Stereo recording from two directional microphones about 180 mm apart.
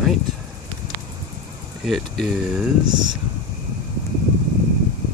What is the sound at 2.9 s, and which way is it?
Speech, 25° right (ahead or behind).